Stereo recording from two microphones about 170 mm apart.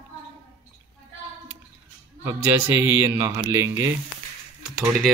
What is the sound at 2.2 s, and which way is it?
A man's voice, 15° right (ahead or behind).